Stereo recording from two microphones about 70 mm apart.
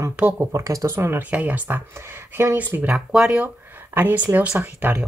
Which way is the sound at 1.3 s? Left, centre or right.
Right.